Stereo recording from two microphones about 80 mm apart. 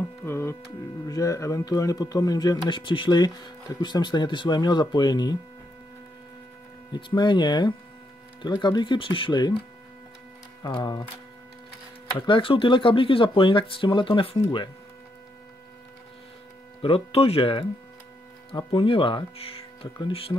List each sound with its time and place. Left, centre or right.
0.2 s speech: left
6.9 s speech: left
10.6 s speech: left
12.3 s speech: left
17.4 s speech: left